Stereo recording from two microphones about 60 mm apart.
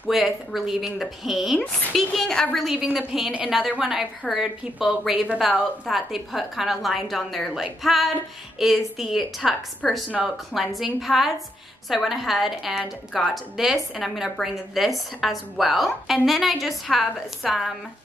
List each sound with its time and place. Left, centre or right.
0.1 s a woman's voice: centre
1.9 s a woman's voice: centre